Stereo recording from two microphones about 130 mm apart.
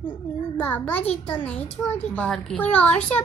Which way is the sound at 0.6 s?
10° left (ahead or behind).